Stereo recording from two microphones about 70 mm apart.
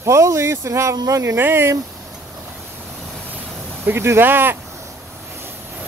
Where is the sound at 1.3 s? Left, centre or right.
Right.